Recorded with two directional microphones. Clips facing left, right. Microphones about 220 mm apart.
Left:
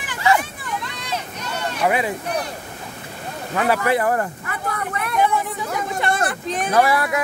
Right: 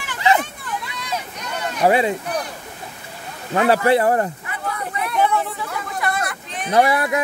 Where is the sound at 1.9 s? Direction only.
30° right (ahead or behind).